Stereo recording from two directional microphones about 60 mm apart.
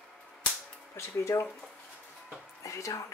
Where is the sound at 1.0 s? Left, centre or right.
Left.